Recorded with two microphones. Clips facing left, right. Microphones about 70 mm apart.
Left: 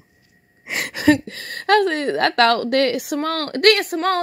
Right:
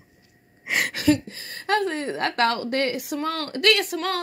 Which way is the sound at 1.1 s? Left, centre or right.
Left.